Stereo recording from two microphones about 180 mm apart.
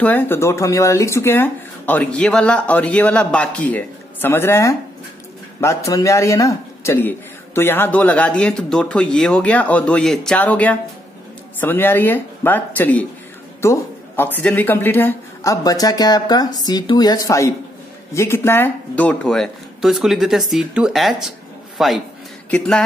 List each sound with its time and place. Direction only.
0.0 s a man's voice: 10° left (ahead or behind)